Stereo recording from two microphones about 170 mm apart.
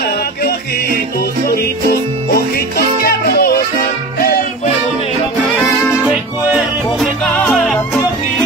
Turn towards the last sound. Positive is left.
turn(degrees=5)  # may be behind; listen again after turning